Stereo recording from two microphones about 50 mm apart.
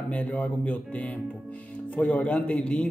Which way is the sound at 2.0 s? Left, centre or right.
Left.